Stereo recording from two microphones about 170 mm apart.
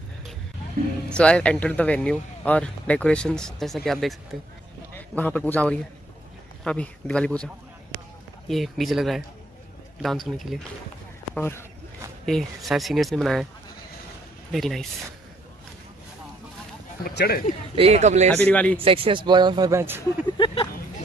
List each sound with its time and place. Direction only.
1.1 s a man's voice: 5° left (ahead or behind)
11.3 s speech: 10° left (ahead or behind)
12.3 s speech: centre (ahead or behind)
14.5 s speech: centre (ahead or behind)
17.0 s speech: 70° left (ahead or behind)
17.7 s speech: 40° right (ahead or behind)
18.3 s speech: 10° left (ahead or behind)
18.8 s speech: 35° right (ahead or behind); by 20.0 s 15° right (ahead or behind)
20.2 s speech: 30° left (ahead or behind)